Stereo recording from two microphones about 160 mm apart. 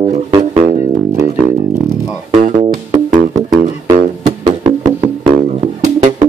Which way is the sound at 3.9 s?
45° right (ahead or behind).